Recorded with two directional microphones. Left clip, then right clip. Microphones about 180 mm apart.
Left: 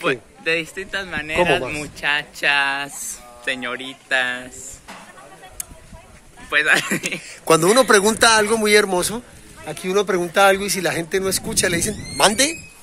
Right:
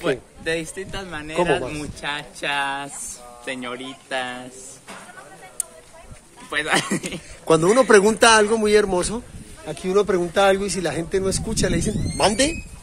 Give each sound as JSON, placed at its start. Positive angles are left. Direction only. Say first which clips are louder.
{"t": 0.1, "sound": "speech", "louder": "left 3 dB", "side_deg": -30}
{"t": 0.9, "sound": "speech", "louder": "left 4 dB", "side_deg": -10}
{"t": 6.5, "sound": "speech", "louder": "left 5 dB", "side_deg": -15}
{"t": 7.4, "sound": "speech", "louder": "left 2 dB", "side_deg": 10}